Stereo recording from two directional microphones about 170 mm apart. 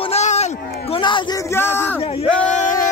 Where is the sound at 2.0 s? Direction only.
35° left (ahead or behind).